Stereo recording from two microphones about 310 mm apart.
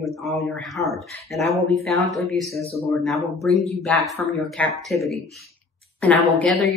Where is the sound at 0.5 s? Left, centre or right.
Centre.